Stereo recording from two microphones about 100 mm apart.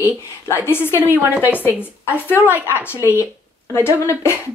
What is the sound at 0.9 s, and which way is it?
Speech, 20° right (ahead or behind).